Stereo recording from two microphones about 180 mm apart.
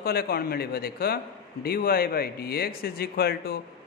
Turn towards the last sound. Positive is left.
turn(degrees=60)  # may be behind; listen again after turning